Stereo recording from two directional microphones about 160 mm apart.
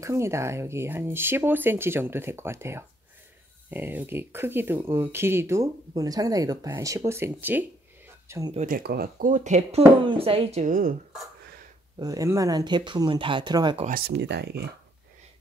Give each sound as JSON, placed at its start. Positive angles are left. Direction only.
{"t": 0.0, "sound": "speech", "side_deg": -15}
{"t": 8.5, "sound": "speech", "side_deg": -60}
{"t": 9.3, "sound": "speech", "side_deg": -45}
{"t": 12.0, "sound": "speech", "side_deg": -20}
{"t": 13.8, "sound": "speech", "side_deg": -70}